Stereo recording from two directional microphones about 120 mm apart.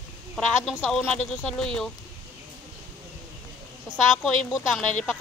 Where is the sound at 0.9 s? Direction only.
5° left (ahead or behind).